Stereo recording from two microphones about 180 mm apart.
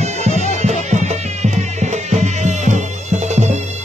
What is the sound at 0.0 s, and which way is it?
Music, 40° right (ahead or behind).